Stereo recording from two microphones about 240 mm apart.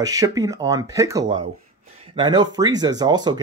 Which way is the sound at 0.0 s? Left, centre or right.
Centre.